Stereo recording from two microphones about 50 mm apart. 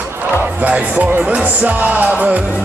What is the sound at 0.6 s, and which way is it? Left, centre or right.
Music, right.